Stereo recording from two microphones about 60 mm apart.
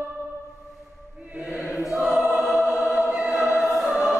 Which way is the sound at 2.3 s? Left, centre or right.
Centre.